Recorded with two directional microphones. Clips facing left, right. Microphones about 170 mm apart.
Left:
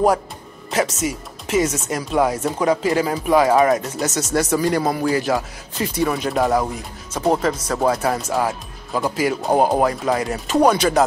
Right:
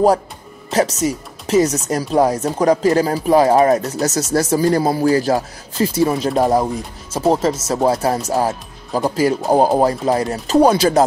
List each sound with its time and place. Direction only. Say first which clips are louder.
0.7 s speech: right 4 dB; 35° right (ahead or behind)